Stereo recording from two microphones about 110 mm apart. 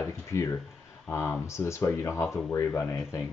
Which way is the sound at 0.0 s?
25° left (ahead or behind).